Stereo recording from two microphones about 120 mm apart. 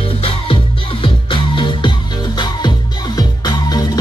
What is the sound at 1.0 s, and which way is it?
Music, 45° left (ahead or behind).